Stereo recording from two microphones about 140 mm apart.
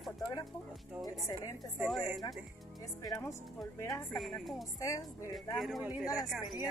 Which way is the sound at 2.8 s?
25° left (ahead or behind).